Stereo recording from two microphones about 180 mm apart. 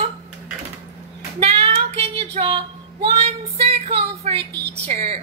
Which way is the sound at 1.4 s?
35° right (ahead or behind).